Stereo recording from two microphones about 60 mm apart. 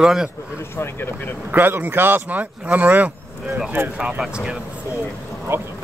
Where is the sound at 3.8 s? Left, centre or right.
Right.